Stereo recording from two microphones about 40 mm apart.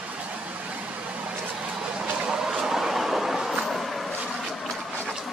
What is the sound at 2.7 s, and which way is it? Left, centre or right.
Train, centre.